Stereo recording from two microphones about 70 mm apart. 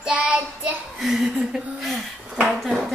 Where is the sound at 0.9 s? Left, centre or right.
Centre.